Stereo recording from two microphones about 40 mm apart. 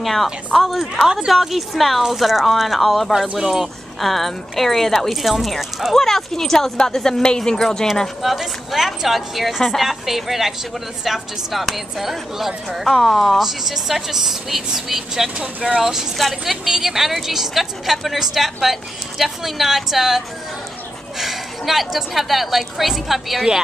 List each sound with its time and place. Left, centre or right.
0.0 s a woman's voice: centre
1.0 s speech: centre
1.3 s a woman's voice: centre
3.1 s speech: centre
4.0 s a woman's voice: centre
5.9 s speech: centre
8.2 s a woman's voice: centre
12.8 s a woman's voice: centre
13.4 s speech: centre
15.2 s speech: right
15.8 s speech: centre
16.2 s a woman's voice: centre
21.2 s a woman's voice: centre